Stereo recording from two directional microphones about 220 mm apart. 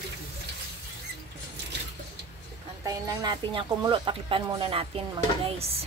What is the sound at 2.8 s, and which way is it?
Speech, 15° right (ahead or behind).